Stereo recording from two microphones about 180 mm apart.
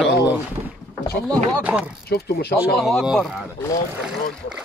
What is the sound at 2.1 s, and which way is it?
Speech, 60° left (ahead or behind).